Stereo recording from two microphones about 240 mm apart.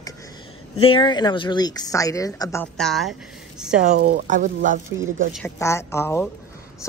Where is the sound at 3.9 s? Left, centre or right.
Right.